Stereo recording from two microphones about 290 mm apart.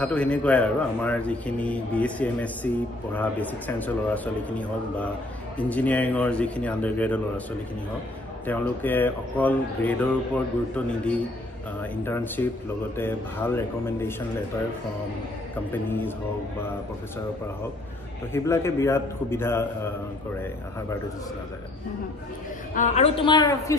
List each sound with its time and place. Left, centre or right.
0.0 s speech: centre
8.5 s speech: centre
11.8 s a man's voice: centre
15.7 s a man's voice: centre
18.3 s a man's voice: centre
22.8 s a man's voice: left